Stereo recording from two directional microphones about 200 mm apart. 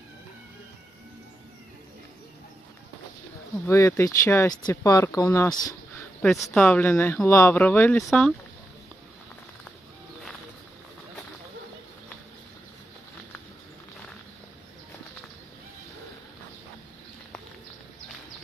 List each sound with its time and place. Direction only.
3.6 s speech: 15° left (ahead or behind)
6.5 s speech: 5° left (ahead or behind)